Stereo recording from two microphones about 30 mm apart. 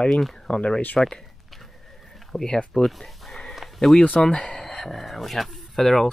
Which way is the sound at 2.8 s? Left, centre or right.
Centre.